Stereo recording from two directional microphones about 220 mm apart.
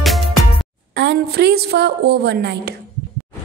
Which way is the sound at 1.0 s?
50° right (ahead or behind).